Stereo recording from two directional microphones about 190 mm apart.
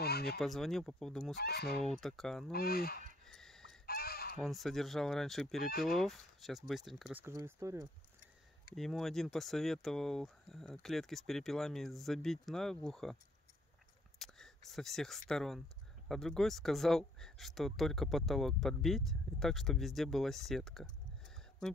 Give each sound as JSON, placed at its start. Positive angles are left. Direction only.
{"t": 0.0, "sound": "a sound", "side_deg": 55}
{"t": 0.4, "sound": "speech", "side_deg": 0}
{"t": 1.4, "sound": "speech", "side_deg": 55}
{"t": 2.0, "sound": "speech", "side_deg": 0}
{"t": 2.5, "sound": "speech", "side_deg": 55}
{"t": 3.3, "sound": "chicken", "side_deg": 0}
{"t": 3.8, "sound": "fowl", "side_deg": 55}
{"t": 4.4, "sound": "speech", "side_deg": 0}
{"t": 8.7, "sound": "speech", "side_deg": 0}